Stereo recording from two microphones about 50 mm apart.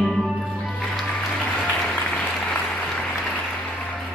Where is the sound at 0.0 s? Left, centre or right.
Centre.